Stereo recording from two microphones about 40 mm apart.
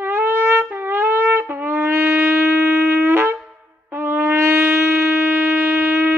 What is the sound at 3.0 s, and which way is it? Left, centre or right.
Wind instrument, right.